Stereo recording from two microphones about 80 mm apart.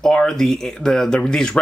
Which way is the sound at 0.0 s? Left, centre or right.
Centre.